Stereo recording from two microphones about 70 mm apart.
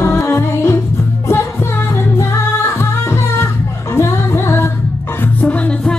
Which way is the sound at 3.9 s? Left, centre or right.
Left.